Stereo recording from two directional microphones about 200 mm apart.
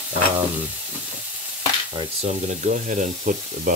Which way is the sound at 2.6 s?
40° right (ahead or behind).